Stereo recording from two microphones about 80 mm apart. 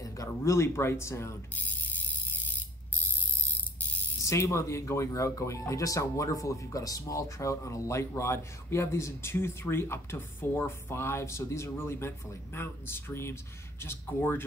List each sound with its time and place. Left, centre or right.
0.0 s speech: left
4.2 s speech: left